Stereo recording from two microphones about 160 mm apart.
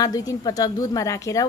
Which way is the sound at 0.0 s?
20° left (ahead or behind).